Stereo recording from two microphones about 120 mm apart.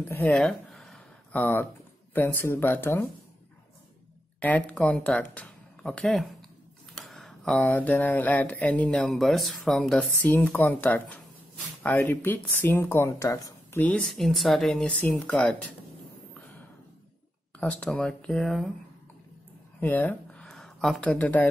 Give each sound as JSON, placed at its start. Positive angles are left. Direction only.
{"t": 0.3, "sound": "a sound", "side_deg": 5}
{"t": 1.3, "sound": "speech", "side_deg": 15}
{"t": 4.4, "sound": "speech", "side_deg": 15}
{"t": 7.0, "sound": "a sound", "side_deg": 5}
{"t": 7.6, "sound": "speech", "side_deg": 15}
{"t": 10.2, "sound": "speech", "side_deg": 15}
{"t": 13.7, "sound": "speech", "side_deg": 10}
{"t": 17.6, "sound": "speech", "side_deg": 10}
{"t": 19.8, "sound": "speech", "side_deg": 15}